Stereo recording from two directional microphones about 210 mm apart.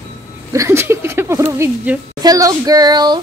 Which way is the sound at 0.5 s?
15° right (ahead or behind).